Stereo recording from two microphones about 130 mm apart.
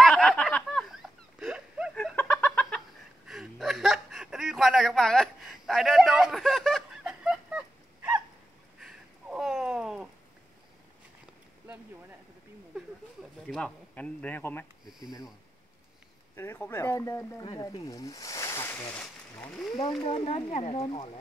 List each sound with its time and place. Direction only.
0.0 s a sound: 5° left (ahead or behind)
2.4 s fowl: 5° left (ahead or behind)
3.3 s whimper: centre (ahead or behind)
8.7 s a sound: 5° right (ahead or behind)
11.6 s a sound: 15° right (ahead or behind)
13.5 s speech: 5° left (ahead or behind)
14.9 s speech: 5° right (ahead or behind)
16.3 s speech: 15° left (ahead or behind)
17.4 s speech: 30° left (ahead or behind)
18.9 s speech: 5° left (ahead or behind)
20.1 s speech: 45° left (ahead or behind)